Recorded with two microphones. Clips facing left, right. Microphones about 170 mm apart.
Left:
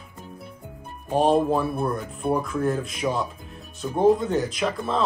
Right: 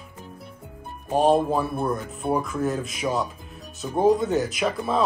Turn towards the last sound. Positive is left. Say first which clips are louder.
# right 1 dB
turn(degrees=-10)  # may be behind; listen again after turning